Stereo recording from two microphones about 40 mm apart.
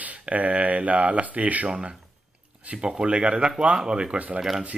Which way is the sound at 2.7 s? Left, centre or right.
Right.